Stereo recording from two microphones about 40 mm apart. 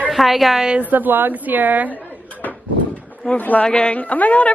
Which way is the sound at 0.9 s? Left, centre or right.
Right.